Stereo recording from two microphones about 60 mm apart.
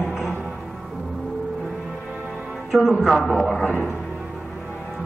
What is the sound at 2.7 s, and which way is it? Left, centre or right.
Speech, centre.